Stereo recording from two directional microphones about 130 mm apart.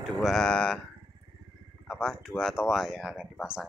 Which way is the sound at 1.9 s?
Centre (ahead or behind).